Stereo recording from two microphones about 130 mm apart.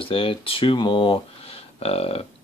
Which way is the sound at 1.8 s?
50° left (ahead or behind).